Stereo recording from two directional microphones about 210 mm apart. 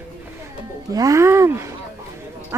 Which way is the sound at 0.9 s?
15° right (ahead or behind).